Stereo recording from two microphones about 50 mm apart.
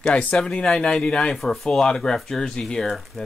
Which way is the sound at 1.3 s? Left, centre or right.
Centre.